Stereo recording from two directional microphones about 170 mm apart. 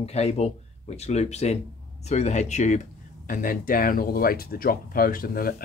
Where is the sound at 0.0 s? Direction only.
40° left (ahead or behind).